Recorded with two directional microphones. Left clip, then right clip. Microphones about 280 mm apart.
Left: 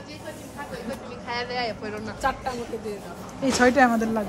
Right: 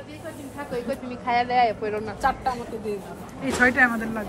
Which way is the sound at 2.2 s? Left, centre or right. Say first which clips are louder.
Right 2 dB; centre.